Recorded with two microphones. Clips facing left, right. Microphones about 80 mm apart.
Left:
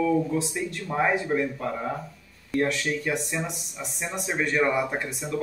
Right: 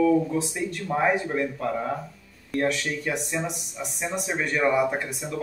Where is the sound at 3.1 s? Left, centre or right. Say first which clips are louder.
Right 1 dB; centre.